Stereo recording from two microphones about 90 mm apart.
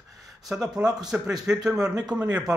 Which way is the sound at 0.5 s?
20° right (ahead or behind).